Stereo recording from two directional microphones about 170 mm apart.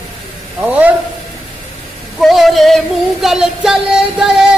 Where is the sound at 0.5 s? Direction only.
10° right (ahead or behind).